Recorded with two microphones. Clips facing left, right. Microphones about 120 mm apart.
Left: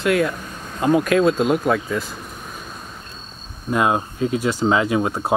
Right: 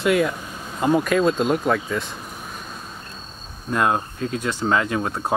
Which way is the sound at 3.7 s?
10° left (ahead or behind).